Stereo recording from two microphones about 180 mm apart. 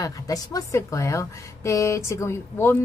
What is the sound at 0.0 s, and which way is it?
A woman's voice, 20° left (ahead or behind).